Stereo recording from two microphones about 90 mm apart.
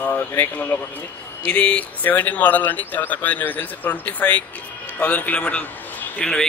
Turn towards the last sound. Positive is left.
turn(degrees=10)  # may be behind; listen again after turning